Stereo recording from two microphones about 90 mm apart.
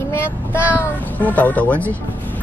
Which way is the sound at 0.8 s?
20° left (ahead or behind).